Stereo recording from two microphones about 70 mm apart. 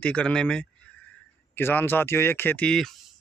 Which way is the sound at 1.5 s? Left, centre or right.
Left.